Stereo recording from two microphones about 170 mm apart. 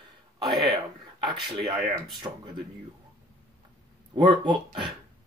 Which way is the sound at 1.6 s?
Centre (ahead or behind).